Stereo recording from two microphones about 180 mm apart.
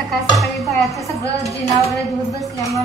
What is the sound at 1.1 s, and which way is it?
Speech, 20° right (ahead or behind).